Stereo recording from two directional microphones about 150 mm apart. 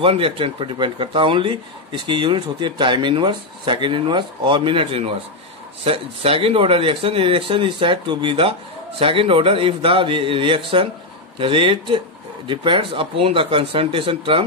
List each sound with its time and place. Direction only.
0.0 s speech: 35° right (ahead or behind)